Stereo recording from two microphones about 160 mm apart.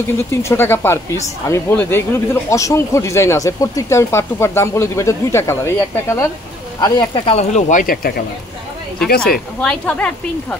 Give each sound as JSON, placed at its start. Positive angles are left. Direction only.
{"t": 0.3, "sound": "speech", "side_deg": 15}
{"t": 6.8, "sound": "speech", "side_deg": 30}
{"t": 9.6, "sound": "a woman's voice", "side_deg": 5}